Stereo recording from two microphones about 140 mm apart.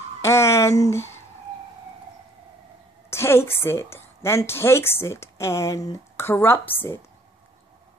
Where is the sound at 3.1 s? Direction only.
20° left (ahead or behind).